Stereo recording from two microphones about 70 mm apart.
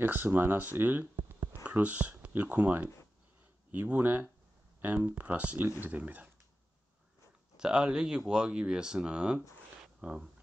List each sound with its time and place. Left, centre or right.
0.0 s speech: right
7.5 s speech: centre